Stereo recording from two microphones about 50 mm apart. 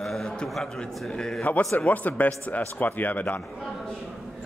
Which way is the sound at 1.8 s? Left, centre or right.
Left.